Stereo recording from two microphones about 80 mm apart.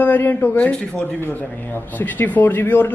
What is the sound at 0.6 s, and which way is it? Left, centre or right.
A man's voice, centre.